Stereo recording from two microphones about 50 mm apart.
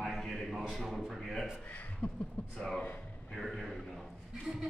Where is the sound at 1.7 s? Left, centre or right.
Left.